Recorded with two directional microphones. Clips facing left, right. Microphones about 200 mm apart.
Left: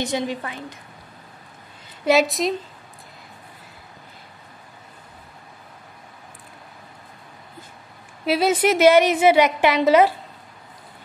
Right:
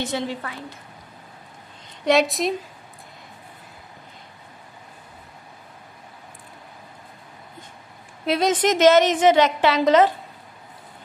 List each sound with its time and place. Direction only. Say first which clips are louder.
0.0 s a woman's voice: left 2 dB; 15° left (ahead or behind)
2.0 s a woman's voice: left 1 dB; centre (ahead or behind)
8.3 s a woman's voice: left 1 dB; 5° left (ahead or behind)